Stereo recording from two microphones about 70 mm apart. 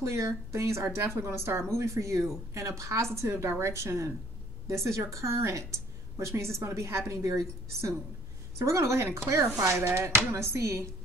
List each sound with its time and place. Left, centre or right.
0.0 s a woman's voice: right